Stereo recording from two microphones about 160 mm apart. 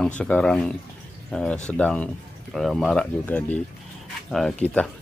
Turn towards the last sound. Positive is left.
turn(degrees=10)  # may be behind; listen again after turning